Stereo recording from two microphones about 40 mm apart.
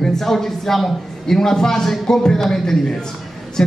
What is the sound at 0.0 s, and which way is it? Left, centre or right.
A man's voice, centre.